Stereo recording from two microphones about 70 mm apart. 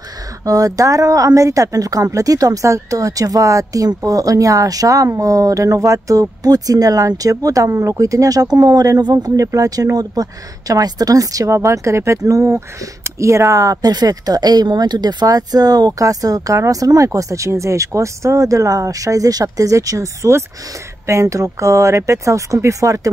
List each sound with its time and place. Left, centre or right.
0.5 s a woman's voice: right